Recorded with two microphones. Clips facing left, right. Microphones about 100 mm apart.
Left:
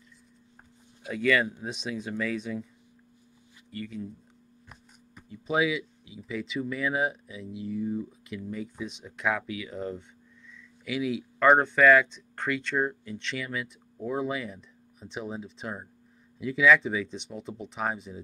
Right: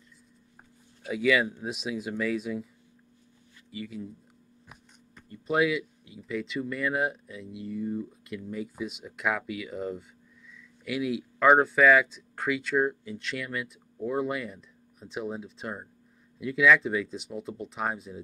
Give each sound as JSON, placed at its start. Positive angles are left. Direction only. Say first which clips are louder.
{"t": 1.0, "sound": "speech", "louder": "right 1 dB", "side_deg": -5}
{"t": 3.7, "sound": "speech", "louder": "left 1 dB", "side_deg": -5}
{"t": 5.1, "sound": "speech", "louder": "right 1 dB", "side_deg": 0}